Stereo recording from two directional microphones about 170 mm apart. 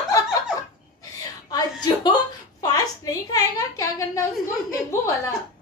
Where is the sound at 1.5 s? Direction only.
25° left (ahead or behind).